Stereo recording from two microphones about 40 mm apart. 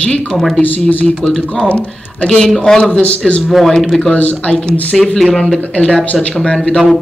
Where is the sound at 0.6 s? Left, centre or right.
Left.